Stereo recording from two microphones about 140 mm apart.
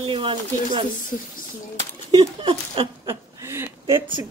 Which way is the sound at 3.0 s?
20° right (ahead or behind).